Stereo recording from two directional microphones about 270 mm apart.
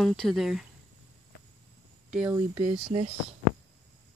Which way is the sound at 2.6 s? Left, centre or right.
Right.